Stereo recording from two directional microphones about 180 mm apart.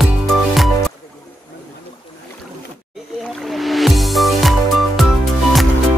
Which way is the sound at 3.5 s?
Centre (ahead or behind).